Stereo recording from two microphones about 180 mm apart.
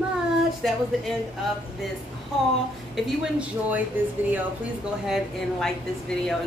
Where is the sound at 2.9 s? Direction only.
5° right (ahead or behind).